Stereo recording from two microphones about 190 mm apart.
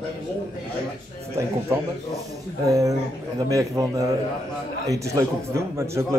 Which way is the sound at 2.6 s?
15° right (ahead or behind).